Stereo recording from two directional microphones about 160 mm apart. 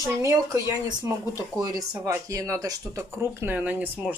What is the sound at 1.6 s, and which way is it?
Speech, 25° right (ahead or behind).